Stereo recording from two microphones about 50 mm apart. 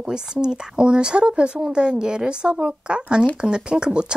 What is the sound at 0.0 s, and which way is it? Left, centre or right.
Speech, centre.